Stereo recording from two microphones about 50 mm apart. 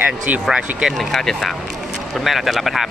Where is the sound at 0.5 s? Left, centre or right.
Centre.